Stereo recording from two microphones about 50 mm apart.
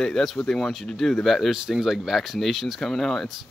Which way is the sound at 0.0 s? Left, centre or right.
Centre.